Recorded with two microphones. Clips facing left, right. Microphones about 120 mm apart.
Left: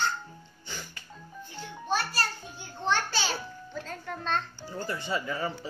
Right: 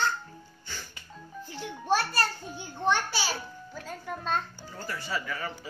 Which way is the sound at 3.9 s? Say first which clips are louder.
Right 1 dB; 10° right (ahead or behind).